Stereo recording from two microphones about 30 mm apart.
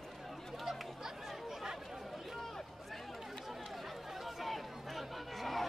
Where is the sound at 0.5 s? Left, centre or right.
Centre.